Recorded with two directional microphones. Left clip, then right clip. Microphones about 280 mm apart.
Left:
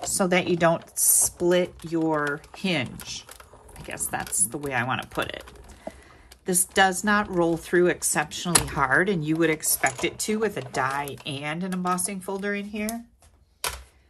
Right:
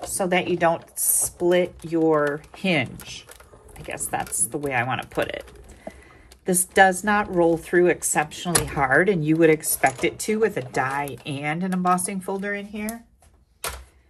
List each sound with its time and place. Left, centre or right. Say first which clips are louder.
0.2 s speech: right 1 dB; centre
1.5 s a woman's voice: right 3 dB; centre